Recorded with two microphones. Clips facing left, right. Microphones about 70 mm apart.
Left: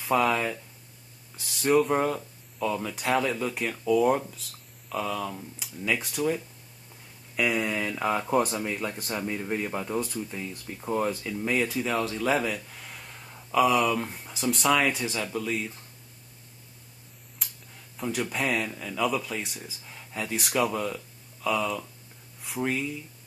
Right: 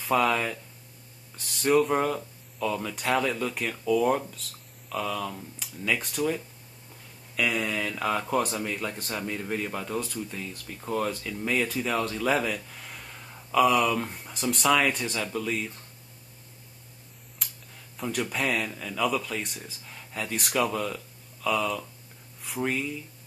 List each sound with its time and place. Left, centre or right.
0.0 s speech: centre
17.4 s a sound: centre
17.9 s speech: centre